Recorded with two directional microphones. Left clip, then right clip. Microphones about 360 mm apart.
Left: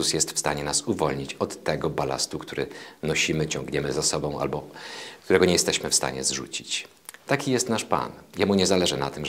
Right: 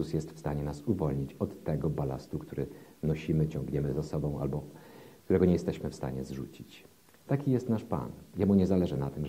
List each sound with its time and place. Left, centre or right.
0.0 s speech: centre